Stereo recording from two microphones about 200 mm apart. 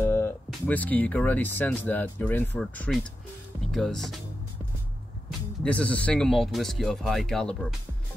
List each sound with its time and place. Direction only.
0.0 s music: 10° left (ahead or behind)
0.5 s speech: 5° left (ahead or behind)
5.6 s speech: 5° left (ahead or behind)